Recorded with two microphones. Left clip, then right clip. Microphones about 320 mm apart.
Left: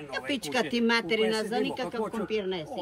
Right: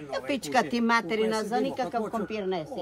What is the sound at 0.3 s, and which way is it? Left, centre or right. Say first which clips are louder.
Speech: right 3 dB; centre.